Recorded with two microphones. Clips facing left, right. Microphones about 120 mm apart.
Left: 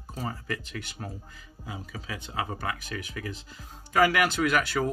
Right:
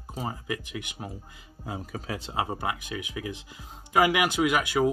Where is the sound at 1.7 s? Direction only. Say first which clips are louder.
Right 4 dB; 40° right (ahead or behind); by 4.9 s 15° right (ahead or behind).